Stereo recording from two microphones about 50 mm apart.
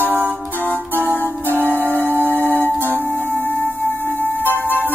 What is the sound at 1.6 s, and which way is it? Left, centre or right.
Music, right.